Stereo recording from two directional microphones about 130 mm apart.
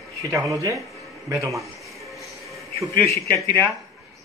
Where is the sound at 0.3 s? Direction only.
25° right (ahead or behind).